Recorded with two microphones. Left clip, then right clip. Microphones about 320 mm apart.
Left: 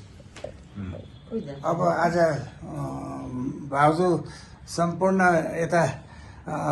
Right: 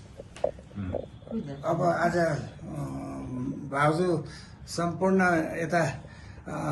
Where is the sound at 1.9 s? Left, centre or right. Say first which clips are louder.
Left 4 dB; left.